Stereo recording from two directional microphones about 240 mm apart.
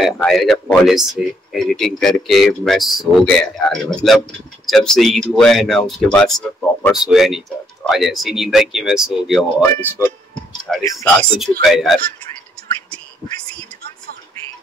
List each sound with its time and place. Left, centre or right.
0.0 s speech: centre
11.7 s speech: centre
12.9 s whispering: centre